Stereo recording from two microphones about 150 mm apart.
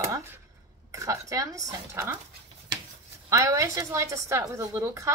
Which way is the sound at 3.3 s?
20° right (ahead or behind).